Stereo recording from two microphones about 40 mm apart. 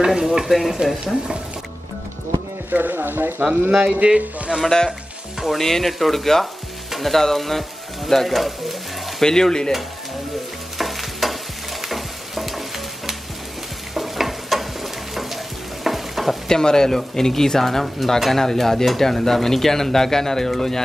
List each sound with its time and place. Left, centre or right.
0.0 s stir: centre
0.5 s frying: centre
1.0 s speech: centre
2.7 s speech: right
4.0 s speech: right
4.6 s speech: centre
6.9 s frying: centre
9.2 s speech: centre
10.8 s stir: centre
11.8 s frying: centre
16.4 s speech: centre